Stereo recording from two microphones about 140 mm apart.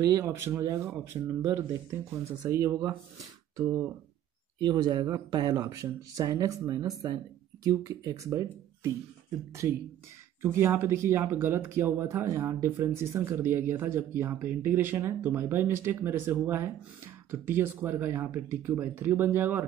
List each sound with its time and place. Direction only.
0.1 s speech: 20° right (ahead or behind)
10.4 s speech: 15° right (ahead or behind)